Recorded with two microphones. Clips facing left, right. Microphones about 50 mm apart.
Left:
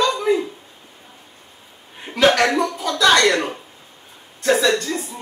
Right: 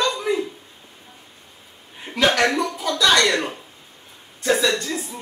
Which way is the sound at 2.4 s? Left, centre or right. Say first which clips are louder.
Left 2 dB; centre.